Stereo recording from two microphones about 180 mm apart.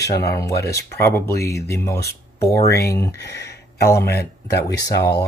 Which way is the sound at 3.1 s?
70° left (ahead or behind).